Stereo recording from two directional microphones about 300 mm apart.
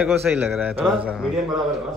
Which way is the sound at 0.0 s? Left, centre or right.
Centre.